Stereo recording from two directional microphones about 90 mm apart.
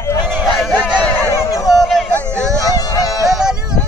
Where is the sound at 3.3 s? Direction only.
5° right (ahead or behind).